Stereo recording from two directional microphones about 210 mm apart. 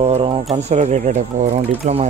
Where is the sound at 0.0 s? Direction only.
25° right (ahead or behind).